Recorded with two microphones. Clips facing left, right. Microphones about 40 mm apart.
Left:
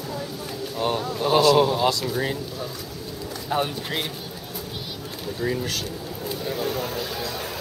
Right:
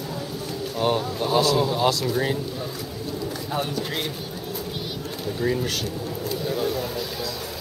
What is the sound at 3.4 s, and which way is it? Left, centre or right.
Speech, centre.